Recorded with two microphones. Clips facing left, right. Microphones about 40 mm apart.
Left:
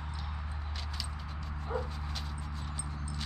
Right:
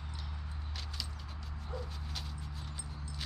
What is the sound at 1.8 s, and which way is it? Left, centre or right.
Dog, centre.